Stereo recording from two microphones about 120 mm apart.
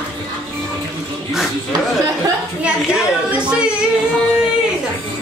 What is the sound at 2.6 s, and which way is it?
Speech, 10° right (ahead or behind).